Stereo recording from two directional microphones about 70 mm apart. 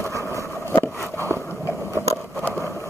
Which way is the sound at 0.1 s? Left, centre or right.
Left.